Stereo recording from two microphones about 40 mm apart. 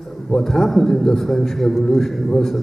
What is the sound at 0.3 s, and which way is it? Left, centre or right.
A man's voice, centre.